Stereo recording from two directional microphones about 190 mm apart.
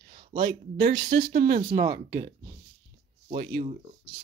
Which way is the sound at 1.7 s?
35° right (ahead or behind).